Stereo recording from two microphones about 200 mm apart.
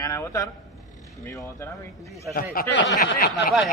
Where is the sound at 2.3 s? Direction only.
45° left (ahead or behind).